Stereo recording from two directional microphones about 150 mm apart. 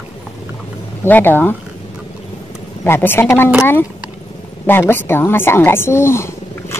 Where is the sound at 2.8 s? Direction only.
15° left (ahead or behind).